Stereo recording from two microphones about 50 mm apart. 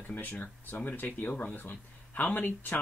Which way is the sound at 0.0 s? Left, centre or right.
Left.